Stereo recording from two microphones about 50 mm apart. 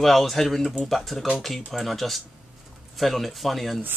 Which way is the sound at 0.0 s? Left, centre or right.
Centre.